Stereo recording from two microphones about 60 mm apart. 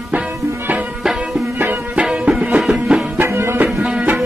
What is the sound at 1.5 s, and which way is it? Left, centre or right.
Music, right.